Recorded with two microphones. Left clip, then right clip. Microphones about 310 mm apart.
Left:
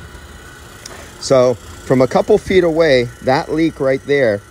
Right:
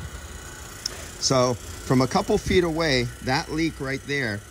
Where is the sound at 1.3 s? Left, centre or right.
Centre.